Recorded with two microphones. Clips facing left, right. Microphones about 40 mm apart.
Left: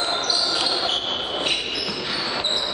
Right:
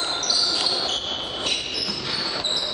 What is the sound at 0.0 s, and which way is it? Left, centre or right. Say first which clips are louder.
Basketball bounce: left 2 dB; left.